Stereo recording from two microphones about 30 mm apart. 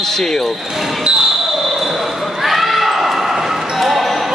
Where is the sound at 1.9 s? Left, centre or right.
Centre.